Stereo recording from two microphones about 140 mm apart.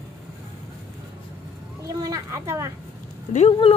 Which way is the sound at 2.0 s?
25° right (ahead or behind).